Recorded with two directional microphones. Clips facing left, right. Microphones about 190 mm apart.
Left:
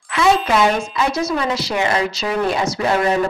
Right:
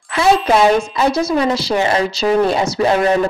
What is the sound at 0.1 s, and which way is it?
A woman's voice, 35° right (ahead or behind).